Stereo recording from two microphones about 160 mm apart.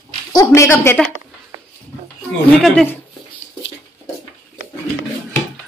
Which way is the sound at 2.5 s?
5° left (ahead or behind).